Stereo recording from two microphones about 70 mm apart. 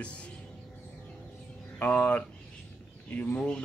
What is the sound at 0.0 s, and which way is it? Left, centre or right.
Music, centre.